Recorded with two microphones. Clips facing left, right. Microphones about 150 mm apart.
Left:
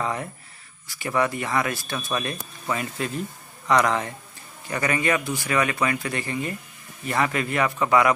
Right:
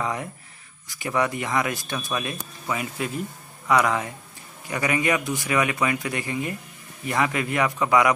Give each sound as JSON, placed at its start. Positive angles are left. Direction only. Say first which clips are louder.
{"t": 0.0, "sound": "speech", "louder": "even", "side_deg": -10}
{"t": 2.1, "sound": "speech", "louder": "left 1 dB", "side_deg": -5}